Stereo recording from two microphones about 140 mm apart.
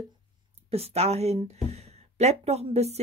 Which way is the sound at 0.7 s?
45° right (ahead or behind).